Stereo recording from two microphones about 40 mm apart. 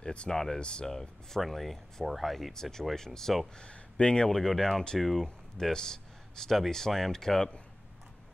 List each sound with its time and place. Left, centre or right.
0.0 s speech: left
0.3 s speech: centre
0.6 s speech: left
0.8 s speech: centre
3.6 s speech: left
4.3 s speech: centre